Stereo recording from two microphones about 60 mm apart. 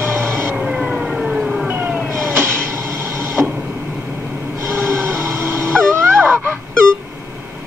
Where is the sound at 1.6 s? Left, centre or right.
Right.